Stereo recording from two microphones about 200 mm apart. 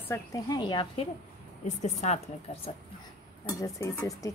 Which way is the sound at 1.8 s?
35° left (ahead or behind).